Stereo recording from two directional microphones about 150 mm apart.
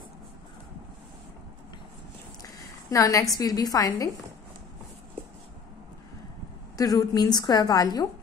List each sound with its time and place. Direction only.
2.9 s a woman's voice: 20° left (ahead or behind)
6.8 s a woman's voice: 25° left (ahead or behind)